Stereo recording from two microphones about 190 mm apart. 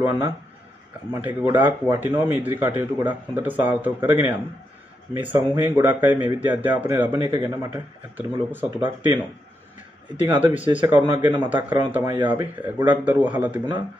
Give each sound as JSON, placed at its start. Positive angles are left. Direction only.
{"t": 0.0, "sound": "speech", "side_deg": -10}
{"t": 10.4, "sound": "speech", "side_deg": -10}